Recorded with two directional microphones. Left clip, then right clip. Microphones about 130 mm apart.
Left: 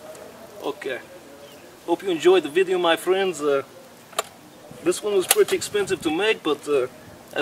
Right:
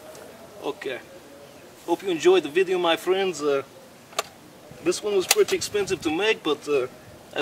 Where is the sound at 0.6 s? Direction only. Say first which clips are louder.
Left 2 dB; centre (ahead or behind).